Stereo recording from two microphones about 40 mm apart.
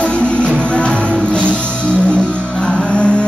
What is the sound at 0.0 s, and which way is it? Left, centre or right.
Music, left.